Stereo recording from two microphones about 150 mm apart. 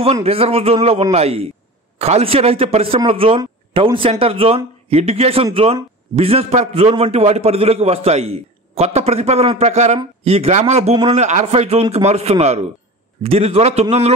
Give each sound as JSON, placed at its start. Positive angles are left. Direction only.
{"t": 0.0, "sound": "a man's voice", "side_deg": -40}